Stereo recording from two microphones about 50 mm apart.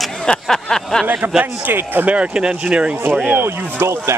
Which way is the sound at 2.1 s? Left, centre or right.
Right.